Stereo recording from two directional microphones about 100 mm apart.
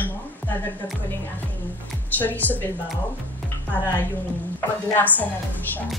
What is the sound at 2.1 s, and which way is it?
Speech, 15° left (ahead or behind).